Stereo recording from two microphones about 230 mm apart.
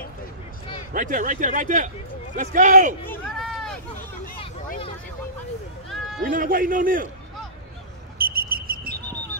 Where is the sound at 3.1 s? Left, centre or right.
Centre.